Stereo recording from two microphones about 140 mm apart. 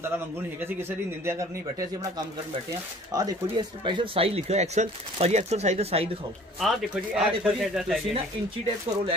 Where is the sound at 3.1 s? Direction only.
25° right (ahead or behind); by 6.1 s 45° right (ahead or behind).